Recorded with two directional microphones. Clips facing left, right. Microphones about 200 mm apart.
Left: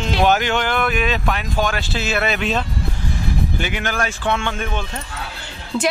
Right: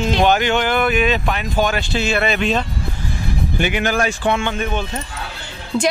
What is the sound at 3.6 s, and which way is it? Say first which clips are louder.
Speech: right 5 dB; 15° right (ahead or behind).